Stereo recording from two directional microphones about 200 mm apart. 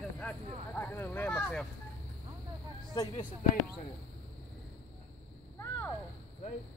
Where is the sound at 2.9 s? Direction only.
20° left (ahead or behind).